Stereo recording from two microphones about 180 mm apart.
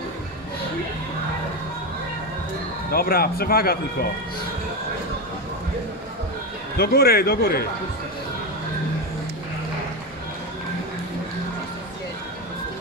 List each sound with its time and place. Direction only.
2.9 s speech: 60° left (ahead or behind)
6.8 s speech: 60° left (ahead or behind)